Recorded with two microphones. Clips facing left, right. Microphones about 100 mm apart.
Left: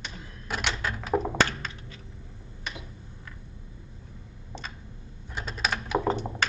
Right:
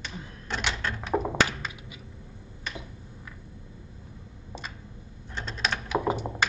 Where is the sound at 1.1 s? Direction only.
5° right (ahead or behind).